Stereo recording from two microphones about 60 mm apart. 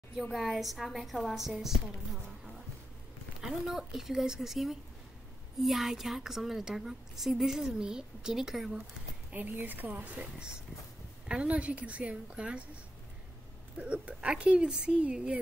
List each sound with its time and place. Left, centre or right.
0.3 s a woman's voice: centre
3.3 s a woman's voice: centre
9.3 s a woman's voice: right
11.2 s a woman's voice: centre
13.7 s a woman's voice: right